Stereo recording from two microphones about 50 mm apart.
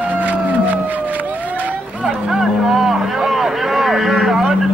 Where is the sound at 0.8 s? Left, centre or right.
Right.